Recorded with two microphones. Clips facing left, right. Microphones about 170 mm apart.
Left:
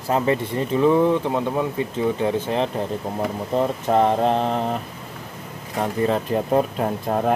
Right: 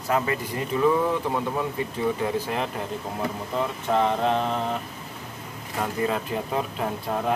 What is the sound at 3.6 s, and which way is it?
Speech, 40° left (ahead or behind).